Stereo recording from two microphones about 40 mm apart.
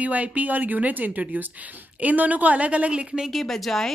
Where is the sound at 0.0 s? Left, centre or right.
Right.